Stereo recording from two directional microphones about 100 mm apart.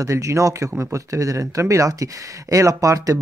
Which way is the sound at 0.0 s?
30° right (ahead or behind).